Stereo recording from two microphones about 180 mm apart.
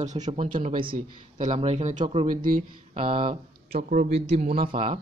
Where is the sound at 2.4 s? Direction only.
50° right (ahead or behind); by 4.9 s 35° right (ahead or behind).